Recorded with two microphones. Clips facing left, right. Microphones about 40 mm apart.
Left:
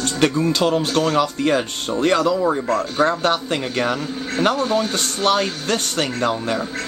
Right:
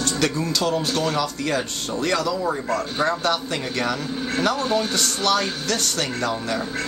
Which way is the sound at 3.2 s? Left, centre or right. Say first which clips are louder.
Left 3 dB; left.